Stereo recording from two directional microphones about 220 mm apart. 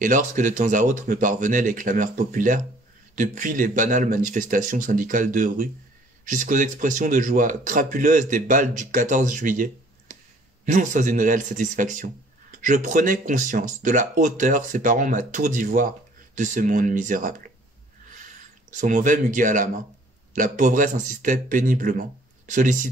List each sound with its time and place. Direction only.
0.0 s a man's voice: 35° right (ahead or behind)